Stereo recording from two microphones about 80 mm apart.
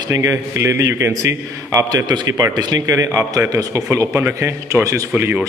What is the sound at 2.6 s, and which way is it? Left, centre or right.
Speech, right.